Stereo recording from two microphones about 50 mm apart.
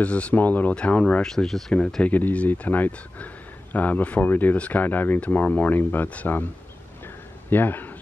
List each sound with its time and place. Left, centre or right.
0.0 s speech: left
0.7 s speech: left
1.2 s speech: centre
2.0 s speech: left
7.4 s speech: left